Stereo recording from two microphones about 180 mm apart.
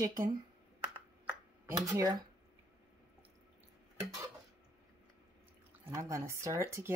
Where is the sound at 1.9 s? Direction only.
20° right (ahead or behind).